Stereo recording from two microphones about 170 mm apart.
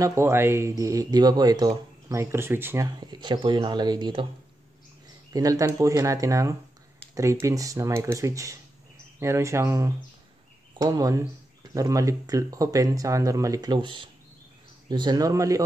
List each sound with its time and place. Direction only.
0.0 s speech: 15° right (ahead or behind)
5.3 s speech: 20° right (ahead or behind)